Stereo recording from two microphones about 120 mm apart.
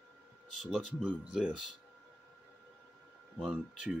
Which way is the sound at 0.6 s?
Centre (ahead or behind).